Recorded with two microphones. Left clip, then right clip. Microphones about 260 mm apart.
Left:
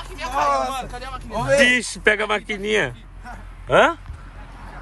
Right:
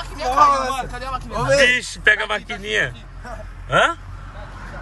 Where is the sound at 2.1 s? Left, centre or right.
Left.